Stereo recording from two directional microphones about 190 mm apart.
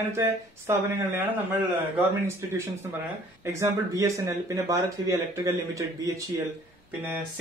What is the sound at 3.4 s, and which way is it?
Speech, 15° right (ahead or behind).